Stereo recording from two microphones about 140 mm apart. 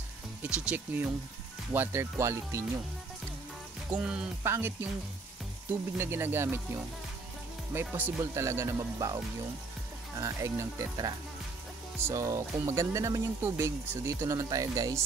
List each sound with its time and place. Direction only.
0.4 s speech: 10° right (ahead or behind)
4.0 s speech: 5° right (ahead or behind)
4.4 s speech: 15° right (ahead or behind)
7.7 s speech: 15° right (ahead or behind)